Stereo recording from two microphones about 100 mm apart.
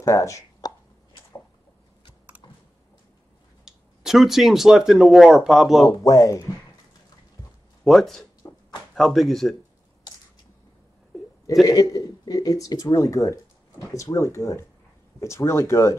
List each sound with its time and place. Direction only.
0.0 s chopping: 30° left (ahead or behind)
2.4 s a sound: 50° left (ahead or behind)
3.6 s speech: 5° right (ahead or behind)
5.9 s speech: 40° left (ahead or behind)
7.8 s speech: centre (ahead or behind)
11.6 s speech: 35° left (ahead or behind)